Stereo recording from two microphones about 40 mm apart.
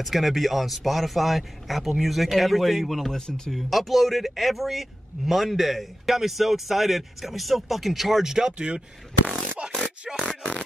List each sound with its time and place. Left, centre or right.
0.0 s a man's voice: centre
3.5 s a man's voice: centre
8.5 s speech: right
10.2 s fart: left